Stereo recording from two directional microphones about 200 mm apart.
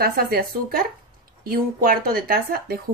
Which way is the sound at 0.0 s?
50° right (ahead or behind).